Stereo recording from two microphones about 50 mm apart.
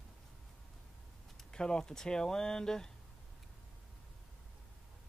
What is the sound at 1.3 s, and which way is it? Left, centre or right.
Speech, centre.